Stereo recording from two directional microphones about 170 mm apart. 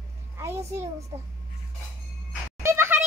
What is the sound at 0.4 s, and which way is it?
Speech, 15° right (ahead or behind).